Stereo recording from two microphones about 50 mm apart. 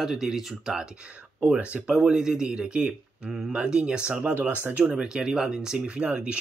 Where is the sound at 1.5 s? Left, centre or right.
Right.